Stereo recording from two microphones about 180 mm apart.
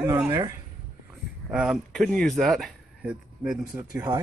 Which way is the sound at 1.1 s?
5° right (ahead or behind).